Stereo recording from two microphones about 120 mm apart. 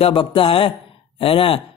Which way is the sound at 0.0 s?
50° left (ahead or behind).